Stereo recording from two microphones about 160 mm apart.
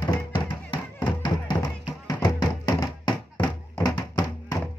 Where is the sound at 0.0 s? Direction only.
25° left (ahead or behind).